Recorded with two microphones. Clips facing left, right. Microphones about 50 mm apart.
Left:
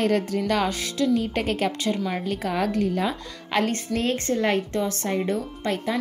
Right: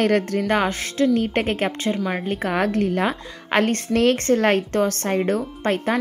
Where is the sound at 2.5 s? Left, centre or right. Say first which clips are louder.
Right 3 dB; right.